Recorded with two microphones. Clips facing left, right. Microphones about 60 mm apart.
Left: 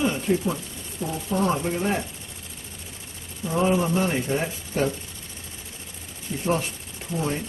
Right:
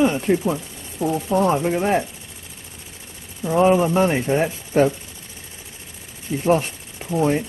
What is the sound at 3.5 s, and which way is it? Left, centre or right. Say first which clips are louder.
Speech: right 6 dB; right.